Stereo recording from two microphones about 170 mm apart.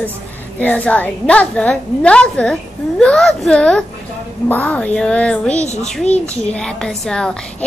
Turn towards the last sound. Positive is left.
turn(degrees=5)  # may be behind; listen again after turning